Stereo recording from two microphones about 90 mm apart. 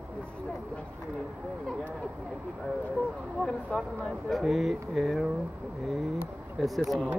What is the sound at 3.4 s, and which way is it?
Speech, 5° left (ahead or behind).